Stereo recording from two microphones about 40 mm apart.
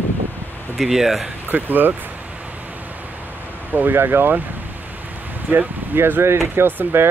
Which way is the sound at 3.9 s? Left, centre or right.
Right.